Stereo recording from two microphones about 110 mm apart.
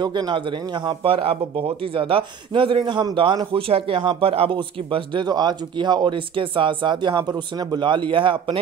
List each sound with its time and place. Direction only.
0.0 s speech: 45° right (ahead or behind)
1.0 s speech: 60° right (ahead or behind)
3.5 s speech: 55° right (ahead or behind)